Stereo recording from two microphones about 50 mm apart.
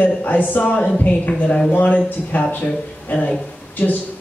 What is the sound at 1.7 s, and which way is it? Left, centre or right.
A man's voice, left.